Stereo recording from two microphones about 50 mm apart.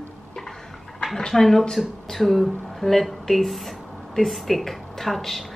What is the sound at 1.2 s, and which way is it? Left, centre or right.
Speech, centre.